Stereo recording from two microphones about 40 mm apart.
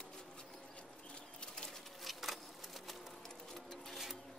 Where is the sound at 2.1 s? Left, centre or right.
Centre.